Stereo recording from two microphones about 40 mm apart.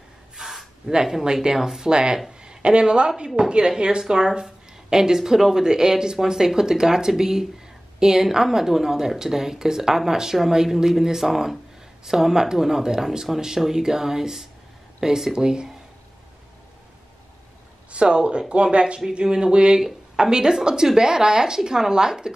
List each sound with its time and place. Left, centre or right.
0.4 s a woman's voice: centre
17.9 s a woman's voice: right